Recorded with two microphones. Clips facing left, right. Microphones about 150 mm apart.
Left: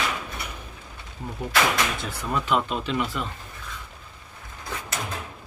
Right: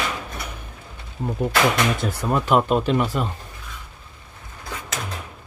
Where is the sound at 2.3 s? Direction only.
50° right (ahead or behind).